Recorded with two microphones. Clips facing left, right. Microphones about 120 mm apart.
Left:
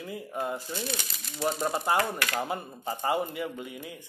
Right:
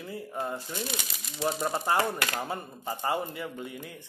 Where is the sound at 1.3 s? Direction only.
Centre (ahead or behind).